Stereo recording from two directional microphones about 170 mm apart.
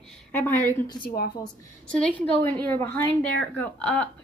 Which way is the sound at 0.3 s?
10° left (ahead or behind).